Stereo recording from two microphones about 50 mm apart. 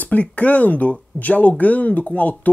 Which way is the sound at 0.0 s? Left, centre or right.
Left.